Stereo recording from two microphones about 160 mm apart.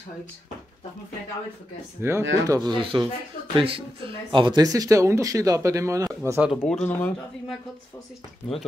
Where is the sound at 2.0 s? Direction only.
15° right (ahead or behind).